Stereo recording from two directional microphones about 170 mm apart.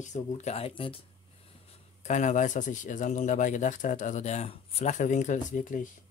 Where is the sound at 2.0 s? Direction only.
45° left (ahead or behind).